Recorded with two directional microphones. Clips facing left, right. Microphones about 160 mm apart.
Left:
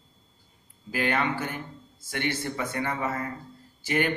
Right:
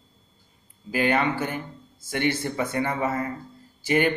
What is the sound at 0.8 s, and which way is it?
A man's voice, 15° right (ahead or behind).